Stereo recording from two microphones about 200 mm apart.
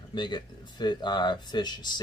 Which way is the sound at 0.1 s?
20° left (ahead or behind).